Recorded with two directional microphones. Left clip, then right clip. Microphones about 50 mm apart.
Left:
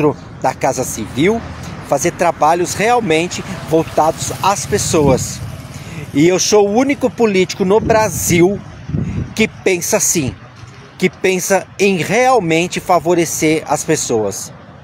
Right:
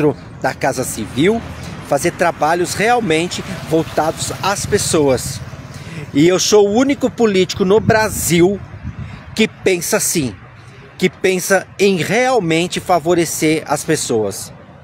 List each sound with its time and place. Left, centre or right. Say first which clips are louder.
0.4 s speech: left 3 dB; right
7.8 s speech: left 1 dB; right